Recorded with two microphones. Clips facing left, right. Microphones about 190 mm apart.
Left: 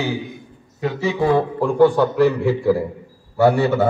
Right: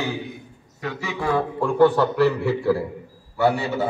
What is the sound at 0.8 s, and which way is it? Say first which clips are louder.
Speech: left 8 dB; 30° left (ahead or behind).